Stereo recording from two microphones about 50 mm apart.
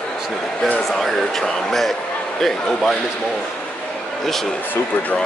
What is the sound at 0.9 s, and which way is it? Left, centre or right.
A man's voice, centre.